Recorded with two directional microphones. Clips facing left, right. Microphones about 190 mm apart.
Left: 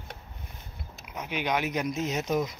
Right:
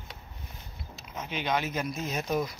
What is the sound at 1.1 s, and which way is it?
Speech, 15° left (ahead or behind).